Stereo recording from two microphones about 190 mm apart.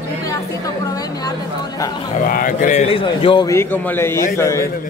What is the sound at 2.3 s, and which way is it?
Speech, 45° left (ahead or behind).